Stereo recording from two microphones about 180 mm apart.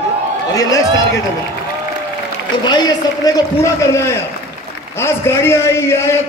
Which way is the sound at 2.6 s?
25° left (ahead or behind).